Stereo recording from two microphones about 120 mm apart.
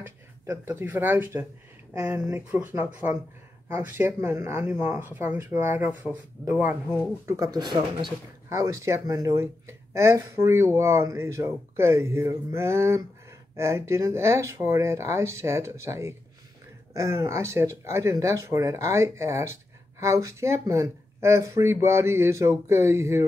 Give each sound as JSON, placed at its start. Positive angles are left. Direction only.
{"t": 0.0, "sound": "speech", "side_deg": -20}
{"t": 7.2, "sound": "speech", "side_deg": -30}
{"t": 8.5, "sound": "speech", "side_deg": -25}